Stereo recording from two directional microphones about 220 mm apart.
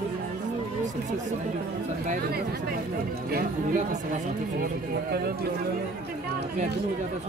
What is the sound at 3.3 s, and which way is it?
Speech, 40° right (ahead or behind).